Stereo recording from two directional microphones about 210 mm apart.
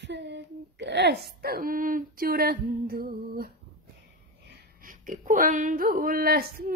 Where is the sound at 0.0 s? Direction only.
55° right (ahead or behind).